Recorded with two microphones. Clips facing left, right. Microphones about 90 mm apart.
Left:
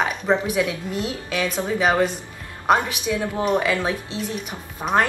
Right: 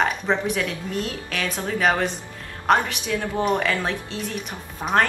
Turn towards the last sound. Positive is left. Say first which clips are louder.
# left 1 dB
turn(degrees=5)  # may be behind; listen again after turning